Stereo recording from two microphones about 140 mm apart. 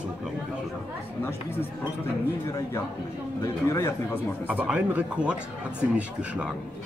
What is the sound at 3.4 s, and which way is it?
Speech, 20° left (ahead or behind).